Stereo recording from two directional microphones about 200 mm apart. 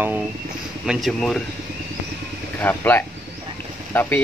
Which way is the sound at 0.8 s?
Centre (ahead or behind).